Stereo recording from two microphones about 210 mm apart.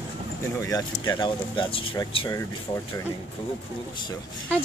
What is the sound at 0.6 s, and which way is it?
Speech, 15° left (ahead or behind).